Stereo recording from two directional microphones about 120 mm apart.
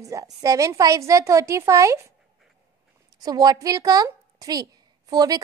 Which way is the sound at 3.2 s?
35° right (ahead or behind).